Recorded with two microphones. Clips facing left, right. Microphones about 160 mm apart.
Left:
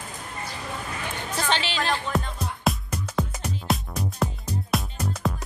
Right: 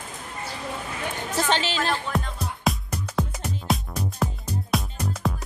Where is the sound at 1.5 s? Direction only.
45° right (ahead or behind).